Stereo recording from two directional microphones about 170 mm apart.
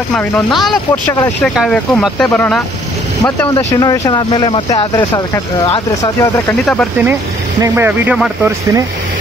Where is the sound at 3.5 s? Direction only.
20° left (ahead or behind).